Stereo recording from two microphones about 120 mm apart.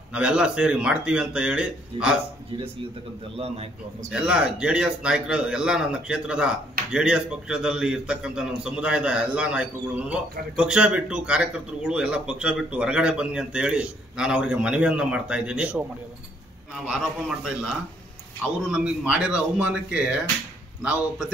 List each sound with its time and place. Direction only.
0.1 s speech: 10° right (ahead or behind)
3.3 s a man's voice: 55° right (ahead or behind)
4.1 s speech: 5° right (ahead or behind)
16.8 s speech: 5° right (ahead or behind)